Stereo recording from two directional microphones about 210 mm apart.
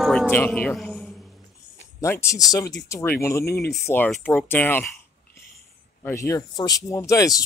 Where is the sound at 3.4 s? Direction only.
50° left (ahead or behind).